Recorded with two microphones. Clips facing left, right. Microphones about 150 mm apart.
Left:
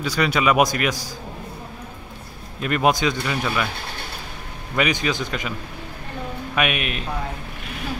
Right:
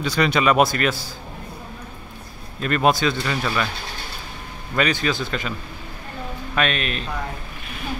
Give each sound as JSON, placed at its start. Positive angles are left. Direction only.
{"t": 0.0, "sound": "a man's voice", "side_deg": 10}
{"t": 2.6, "sound": "a man's voice", "side_deg": 15}
{"t": 4.7, "sound": "a man's voice", "side_deg": 15}
{"t": 6.5, "sound": "a man's voice", "side_deg": 15}